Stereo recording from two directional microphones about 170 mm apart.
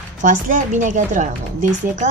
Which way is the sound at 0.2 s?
50° right (ahead or behind).